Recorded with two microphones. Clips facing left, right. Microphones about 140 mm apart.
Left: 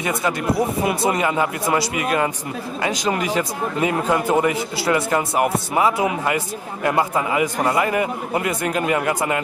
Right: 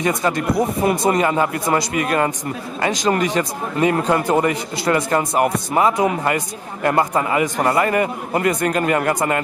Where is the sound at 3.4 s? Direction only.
45° right (ahead or behind).